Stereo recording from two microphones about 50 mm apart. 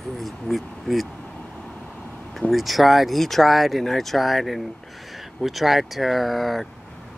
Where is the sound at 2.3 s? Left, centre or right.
Centre.